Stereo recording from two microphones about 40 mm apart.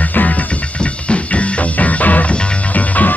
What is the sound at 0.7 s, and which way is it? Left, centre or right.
Music, left.